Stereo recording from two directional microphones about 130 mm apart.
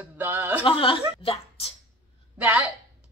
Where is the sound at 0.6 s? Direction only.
40° left (ahead or behind).